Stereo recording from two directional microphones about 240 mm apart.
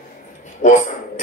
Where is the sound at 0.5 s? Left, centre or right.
Left.